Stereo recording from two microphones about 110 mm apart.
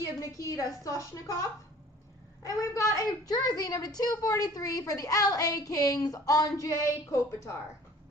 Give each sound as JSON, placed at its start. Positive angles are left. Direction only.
{"t": 0.0, "sound": "a woman's voice", "side_deg": 30}